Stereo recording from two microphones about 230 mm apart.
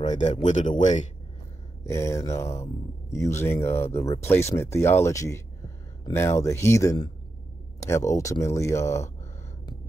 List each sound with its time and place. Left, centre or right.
0.0 s speech: left
1.9 s speech: centre